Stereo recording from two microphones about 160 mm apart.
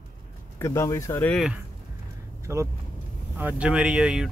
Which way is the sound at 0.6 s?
15° left (ahead or behind).